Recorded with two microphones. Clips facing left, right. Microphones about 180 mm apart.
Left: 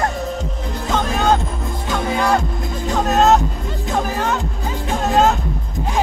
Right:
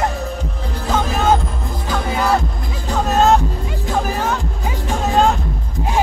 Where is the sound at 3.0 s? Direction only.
Centre (ahead or behind).